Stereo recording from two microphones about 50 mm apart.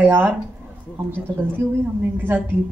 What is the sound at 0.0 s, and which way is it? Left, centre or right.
Speech, right.